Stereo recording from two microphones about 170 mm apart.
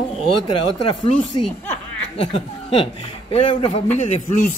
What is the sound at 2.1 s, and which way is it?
Speech, 35° left (ahead or behind).